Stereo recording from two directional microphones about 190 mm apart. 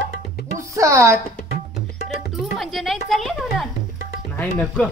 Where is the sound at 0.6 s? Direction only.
15° right (ahead or behind).